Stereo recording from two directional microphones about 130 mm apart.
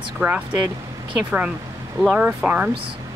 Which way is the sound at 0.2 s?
15° right (ahead or behind).